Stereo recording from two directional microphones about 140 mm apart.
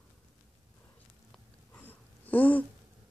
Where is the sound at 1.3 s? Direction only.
10° left (ahead or behind).